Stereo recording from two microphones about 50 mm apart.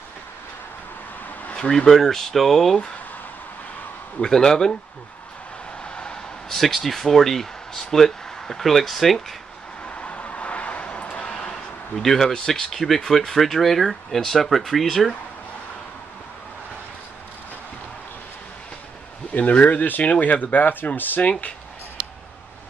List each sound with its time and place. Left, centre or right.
1.6 s speech: centre
1.9 s speech: centre
4.2 s speech: centre
5.9 s vehicle: centre
6.5 s speech: centre
9.8 s a sound: left
12.0 s speech: centre
19.3 s speech: left
21.2 s speech: left